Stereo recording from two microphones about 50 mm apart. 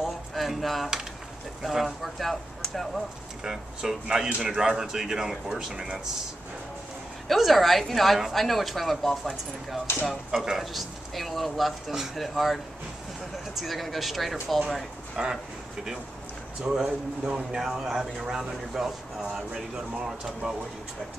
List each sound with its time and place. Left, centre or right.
0.0 s speech: centre
3.4 s speech: centre
7.2 s speech: centre
13.6 s speech: centre
15.2 s speech: centre
16.6 s speech: centre